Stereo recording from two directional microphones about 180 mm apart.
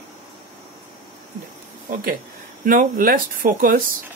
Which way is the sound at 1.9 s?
55° right (ahead or behind).